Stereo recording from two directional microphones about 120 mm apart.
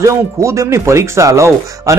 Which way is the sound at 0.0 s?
25° right (ahead or behind).